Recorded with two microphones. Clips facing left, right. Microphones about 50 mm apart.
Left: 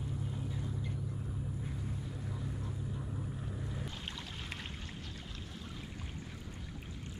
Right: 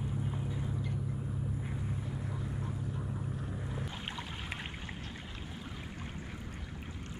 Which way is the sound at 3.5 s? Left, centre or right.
Centre.